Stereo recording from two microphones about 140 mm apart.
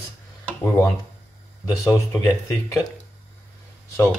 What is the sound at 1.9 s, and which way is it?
Speech, 20° left (ahead or behind).